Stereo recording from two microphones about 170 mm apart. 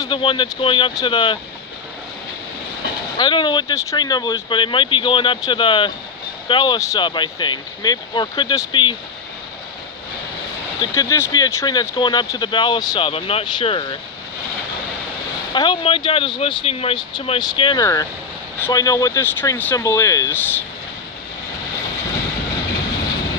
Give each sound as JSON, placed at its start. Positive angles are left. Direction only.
{"t": 0.0, "sound": "speech", "side_deg": 30}
{"t": 3.2, "sound": "speech", "side_deg": 25}
{"t": 10.8, "sound": "speech", "side_deg": 20}
{"t": 15.5, "sound": "speech", "side_deg": 25}